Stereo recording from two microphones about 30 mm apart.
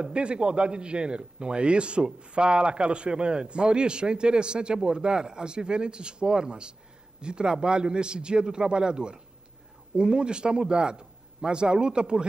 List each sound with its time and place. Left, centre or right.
0.0 s a man's voice: right